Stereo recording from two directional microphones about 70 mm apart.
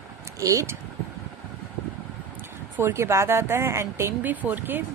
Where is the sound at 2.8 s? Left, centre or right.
Right.